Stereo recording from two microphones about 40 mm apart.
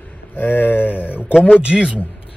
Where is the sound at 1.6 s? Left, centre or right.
Right.